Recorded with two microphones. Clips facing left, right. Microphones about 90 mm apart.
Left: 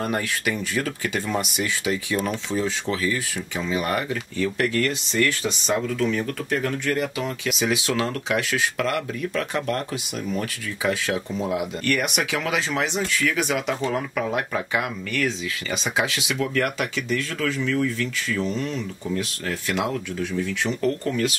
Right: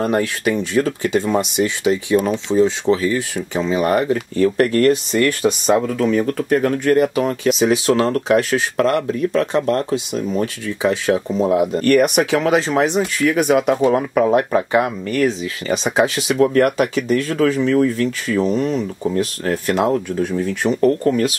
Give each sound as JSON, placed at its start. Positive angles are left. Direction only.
{"t": 0.0, "sound": "speech", "side_deg": -30}
{"t": 11.1, "sound": "speech", "side_deg": -40}